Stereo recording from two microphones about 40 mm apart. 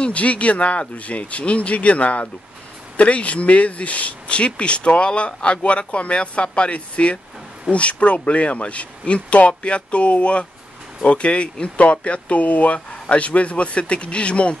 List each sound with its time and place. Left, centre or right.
0.0 s speech: left